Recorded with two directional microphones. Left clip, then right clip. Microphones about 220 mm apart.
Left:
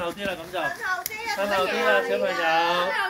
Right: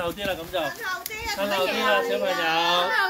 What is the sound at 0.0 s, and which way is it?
Speech, 50° right (ahead or behind).